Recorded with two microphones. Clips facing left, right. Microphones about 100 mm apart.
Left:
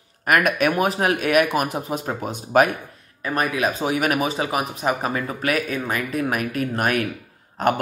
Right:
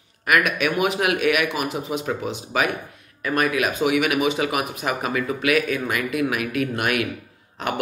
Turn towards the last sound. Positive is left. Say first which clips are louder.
# left 7 dB
turn(degrees=45)  # may be behind; listen again after turning